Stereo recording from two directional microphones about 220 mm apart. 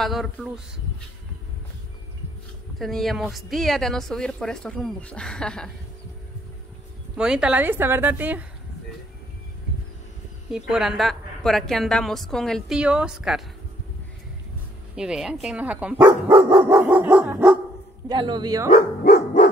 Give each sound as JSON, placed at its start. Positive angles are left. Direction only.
{"t": 0.0, "sound": "a woman's voice", "side_deg": 0}
{"t": 2.8, "sound": "a woman's voice", "side_deg": 0}
{"t": 7.2, "sound": "speech", "side_deg": -5}
{"t": 10.5, "sound": "a woman's voice", "side_deg": 0}
{"t": 15.0, "sound": "a woman's voice", "side_deg": -5}
{"t": 16.7, "sound": "speech", "side_deg": -10}
{"t": 18.0, "sound": "speech", "side_deg": -20}
{"t": 18.7, "sound": "dog", "side_deg": 40}